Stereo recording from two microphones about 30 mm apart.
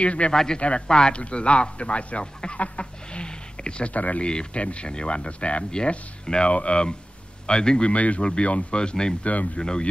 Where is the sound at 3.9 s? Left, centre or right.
Left.